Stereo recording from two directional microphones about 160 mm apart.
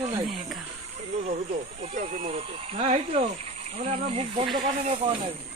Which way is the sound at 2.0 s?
50° right (ahead or behind).